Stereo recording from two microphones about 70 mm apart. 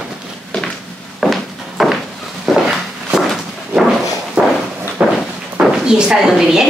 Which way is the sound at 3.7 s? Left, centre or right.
Centre.